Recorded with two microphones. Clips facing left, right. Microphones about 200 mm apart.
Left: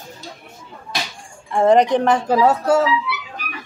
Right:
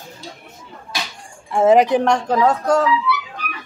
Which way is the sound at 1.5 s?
5° right (ahead or behind).